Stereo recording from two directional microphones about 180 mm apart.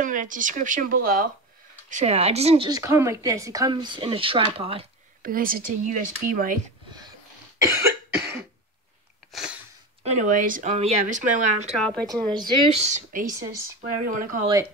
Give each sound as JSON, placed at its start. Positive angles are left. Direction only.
{"t": 0.0, "sound": "speech", "side_deg": -45}
{"t": 1.9, "sound": "speech", "side_deg": -40}
{"t": 2.8, "sound": "speech", "side_deg": -15}
{"t": 5.2, "sound": "speech", "side_deg": -50}
{"t": 7.6, "sound": "cough", "side_deg": -15}
{"t": 9.3, "sound": "sneeze", "side_deg": -5}
{"t": 10.0, "sound": "speech", "side_deg": -45}
{"t": 11.7, "sound": "speech", "side_deg": 5}
{"t": 12.7, "sound": "speech", "side_deg": -45}